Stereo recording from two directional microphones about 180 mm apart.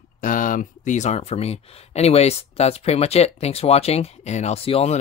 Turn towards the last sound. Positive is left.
turn(degrees=35)  # may be behind; listen again after turning